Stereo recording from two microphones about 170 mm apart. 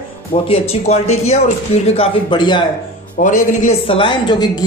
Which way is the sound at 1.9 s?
30° left (ahead or behind).